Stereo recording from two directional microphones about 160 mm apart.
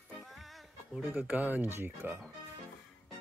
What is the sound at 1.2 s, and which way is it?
Speech, 10° right (ahead or behind).